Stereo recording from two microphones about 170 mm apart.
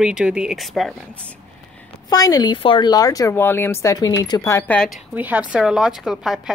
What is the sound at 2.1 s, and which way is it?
Speech, 20° left (ahead or behind).